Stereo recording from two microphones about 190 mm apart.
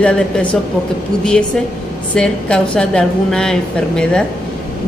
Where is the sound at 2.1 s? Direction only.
5° left (ahead or behind).